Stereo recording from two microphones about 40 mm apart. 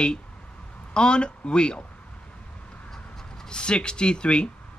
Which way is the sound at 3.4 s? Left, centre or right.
Left.